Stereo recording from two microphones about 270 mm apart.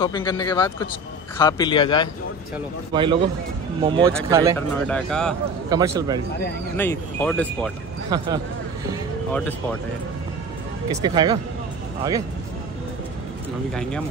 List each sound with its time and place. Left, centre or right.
0.0 s speech: centre
2.9 s speech: centre
4.6 s speech: centre
5.7 s speech: centre
6.8 s speech: centre
8.1 s speech: centre
9.3 s speech: centre
11.0 s speech: centre